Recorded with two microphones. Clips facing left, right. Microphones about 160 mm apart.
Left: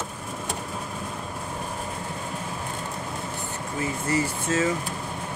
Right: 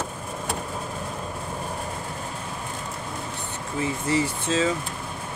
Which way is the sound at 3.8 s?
20° right (ahead or behind).